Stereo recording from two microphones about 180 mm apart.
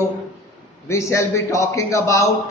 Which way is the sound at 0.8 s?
15° left (ahead or behind).